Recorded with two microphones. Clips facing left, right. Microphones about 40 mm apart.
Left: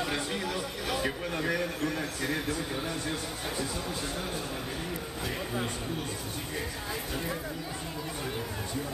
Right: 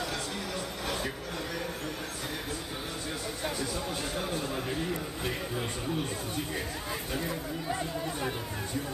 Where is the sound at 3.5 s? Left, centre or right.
Left.